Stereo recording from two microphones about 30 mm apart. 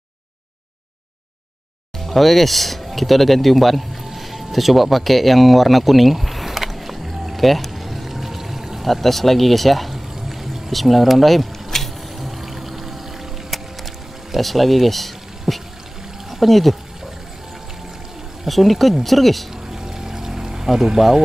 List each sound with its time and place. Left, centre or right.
2.0 s speech: centre
4.0 s music: centre
7.4 s pour: centre
8.8 s speech: centre
9.9 s pour: centre
10.7 s speech: centre
11.7 s music: centre
12.2 s music: centre
16.3 s speech: centre
18.5 s speech: centre
19.5 s a sound: centre
20.4 s vehicle: centre